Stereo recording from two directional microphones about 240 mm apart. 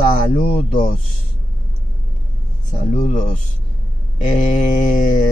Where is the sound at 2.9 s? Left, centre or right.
Left.